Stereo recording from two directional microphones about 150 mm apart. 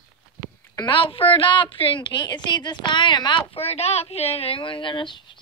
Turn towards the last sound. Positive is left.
turn(degrees=30)  # may be behind; listen again after turning